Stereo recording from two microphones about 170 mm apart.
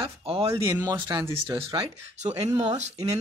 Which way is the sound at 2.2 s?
40° right (ahead or behind).